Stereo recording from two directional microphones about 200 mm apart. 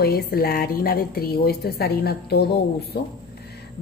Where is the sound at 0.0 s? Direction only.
50° left (ahead or behind).